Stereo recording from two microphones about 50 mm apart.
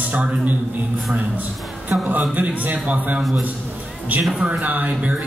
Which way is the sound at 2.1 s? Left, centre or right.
Right.